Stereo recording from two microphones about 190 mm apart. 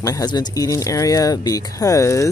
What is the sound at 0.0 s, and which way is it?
Speech, 20° left (ahead or behind).